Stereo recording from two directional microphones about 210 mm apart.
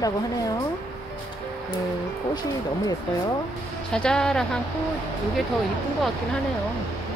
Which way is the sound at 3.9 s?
5° left (ahead or behind).